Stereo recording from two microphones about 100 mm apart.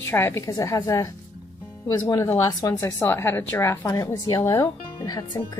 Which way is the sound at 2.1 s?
35° left (ahead or behind).